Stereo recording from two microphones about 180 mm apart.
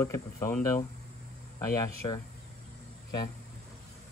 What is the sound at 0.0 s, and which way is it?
Speech, 15° left (ahead or behind).